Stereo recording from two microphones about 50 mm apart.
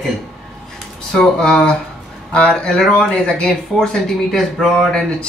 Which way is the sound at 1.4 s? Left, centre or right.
Centre.